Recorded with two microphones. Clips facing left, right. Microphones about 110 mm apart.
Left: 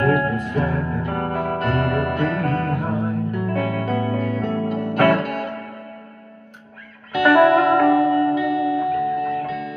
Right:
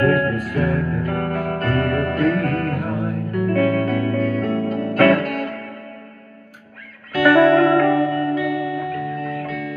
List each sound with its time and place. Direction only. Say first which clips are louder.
0.0 s music: right 1 dB; 20° left (ahead or behind)
7.1 s music: right 1 dB; 20° left (ahead or behind)